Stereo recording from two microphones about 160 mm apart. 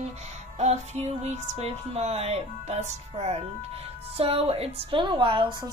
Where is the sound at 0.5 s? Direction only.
45° right (ahead or behind).